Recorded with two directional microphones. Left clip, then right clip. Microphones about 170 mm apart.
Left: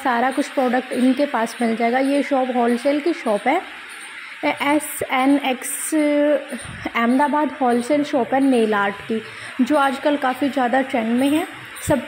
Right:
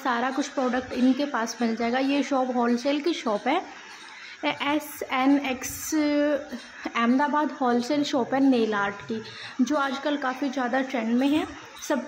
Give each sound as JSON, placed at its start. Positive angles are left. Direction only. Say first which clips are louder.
{"t": 0.0, "sound": "a woman's voice", "louder": "left 7 dB", "side_deg": 25}
{"t": 4.4, "sound": "a woman's voice", "louder": "left 7 dB", "side_deg": 25}